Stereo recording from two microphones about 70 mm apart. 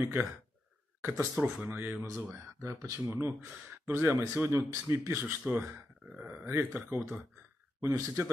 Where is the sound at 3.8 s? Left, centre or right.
Right.